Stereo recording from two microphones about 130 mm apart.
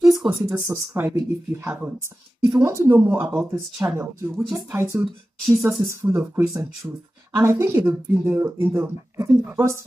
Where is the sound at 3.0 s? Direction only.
10° right (ahead or behind).